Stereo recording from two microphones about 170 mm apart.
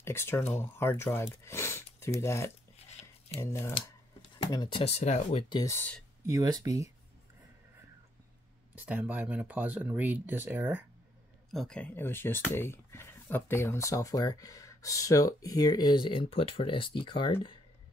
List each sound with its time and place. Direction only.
0.0 s speech: 15° left (ahead or behind); by 5.4 s 40° left (ahead or behind)
5.5 s speech: 20° left (ahead or behind)
6.2 s speech: 20° right (ahead or behind)
8.7 s speech: 10° right (ahead or behind)
11.5 s speech: 5° left (ahead or behind); by 17.6 s 30° left (ahead or behind)